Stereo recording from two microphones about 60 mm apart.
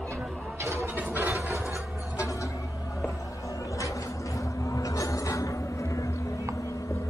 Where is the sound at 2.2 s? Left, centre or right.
Left.